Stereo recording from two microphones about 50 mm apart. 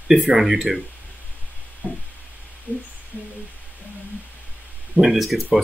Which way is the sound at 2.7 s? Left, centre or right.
Right.